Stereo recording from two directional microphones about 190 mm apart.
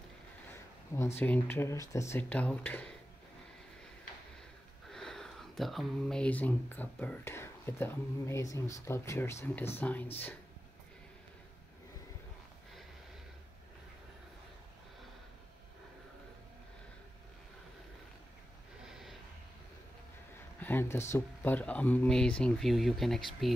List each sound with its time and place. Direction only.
0.9 s speech: 15° left (ahead or behind)
4.9 s speech: centre (ahead or behind)
18.9 s a sound: centre (ahead or behind)
20.6 s speech: 10° left (ahead or behind)